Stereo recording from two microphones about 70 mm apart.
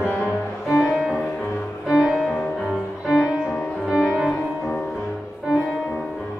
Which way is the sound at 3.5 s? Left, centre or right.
Centre.